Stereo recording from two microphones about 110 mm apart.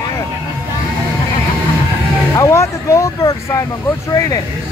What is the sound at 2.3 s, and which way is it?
Speech, 30° left (ahead or behind).